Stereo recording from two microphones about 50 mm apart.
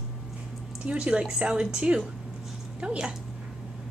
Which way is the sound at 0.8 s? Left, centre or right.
Right.